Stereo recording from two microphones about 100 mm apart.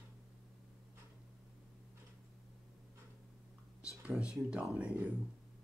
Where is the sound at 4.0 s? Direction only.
10° right (ahead or behind).